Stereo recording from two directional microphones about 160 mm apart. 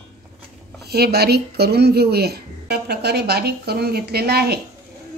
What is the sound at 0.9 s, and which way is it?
Speech, 85° right.